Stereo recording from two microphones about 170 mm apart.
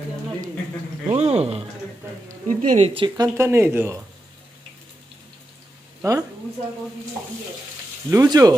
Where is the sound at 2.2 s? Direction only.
50° right (ahead or behind).